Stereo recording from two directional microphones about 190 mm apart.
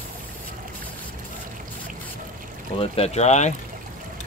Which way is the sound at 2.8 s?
30° left (ahead or behind).